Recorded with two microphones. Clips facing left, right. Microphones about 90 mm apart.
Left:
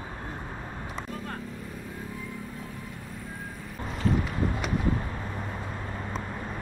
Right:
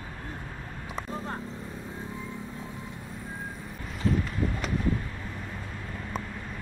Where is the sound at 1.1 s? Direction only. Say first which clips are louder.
Right 4 dB; 25° right (ahead or behind).